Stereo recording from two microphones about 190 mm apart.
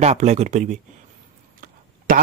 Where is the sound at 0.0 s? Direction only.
35° right (ahead or behind).